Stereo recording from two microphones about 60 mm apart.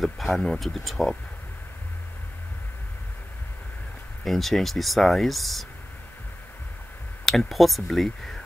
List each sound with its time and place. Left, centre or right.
0.0 s speech: centre
4.2 s speech: centre
7.2 s speech: centre